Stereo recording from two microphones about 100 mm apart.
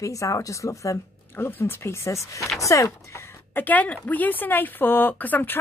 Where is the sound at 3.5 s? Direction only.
15° left (ahead or behind).